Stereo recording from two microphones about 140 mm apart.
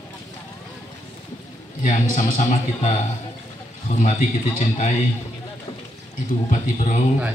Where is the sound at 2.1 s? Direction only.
60° left (ahead or behind).